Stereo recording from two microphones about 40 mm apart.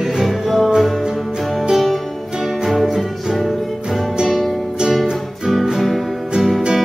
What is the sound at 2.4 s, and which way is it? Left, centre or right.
Music, centre.